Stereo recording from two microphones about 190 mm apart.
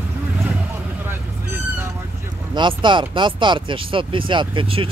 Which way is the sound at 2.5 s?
25° right (ahead or behind).